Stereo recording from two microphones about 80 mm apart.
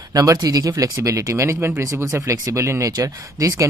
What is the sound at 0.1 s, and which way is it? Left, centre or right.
Speech, right.